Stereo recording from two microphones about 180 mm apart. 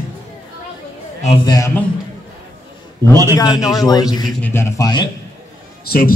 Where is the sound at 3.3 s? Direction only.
20° left (ahead or behind).